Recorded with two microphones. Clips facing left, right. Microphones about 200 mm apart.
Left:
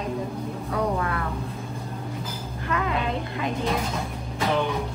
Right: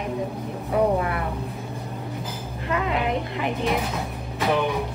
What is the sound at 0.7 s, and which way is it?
Speech, 20° right (ahead or behind).